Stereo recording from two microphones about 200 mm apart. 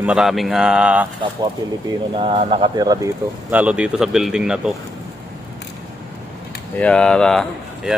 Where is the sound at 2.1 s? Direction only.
30° right (ahead or behind).